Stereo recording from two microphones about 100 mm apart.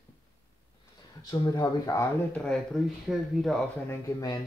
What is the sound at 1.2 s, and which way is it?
Speech, 40° left (ahead or behind).